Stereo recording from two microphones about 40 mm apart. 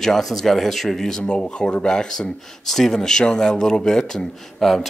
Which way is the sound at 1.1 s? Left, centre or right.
Left.